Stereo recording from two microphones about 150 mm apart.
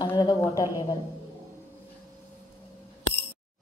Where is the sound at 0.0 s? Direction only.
30° left (ahead or behind).